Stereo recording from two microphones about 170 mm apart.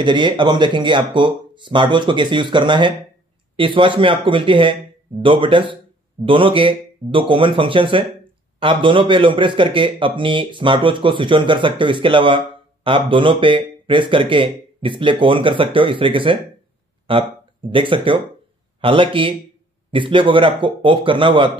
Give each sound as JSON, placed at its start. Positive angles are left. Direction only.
{"t": 0.0, "sound": "speech", "side_deg": -30}